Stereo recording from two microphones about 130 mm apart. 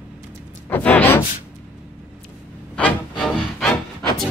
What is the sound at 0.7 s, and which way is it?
Sigh, 15° left (ahead or behind).